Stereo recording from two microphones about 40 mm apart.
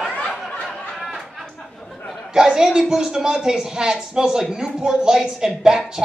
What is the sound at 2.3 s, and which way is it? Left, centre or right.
A man's voice, centre.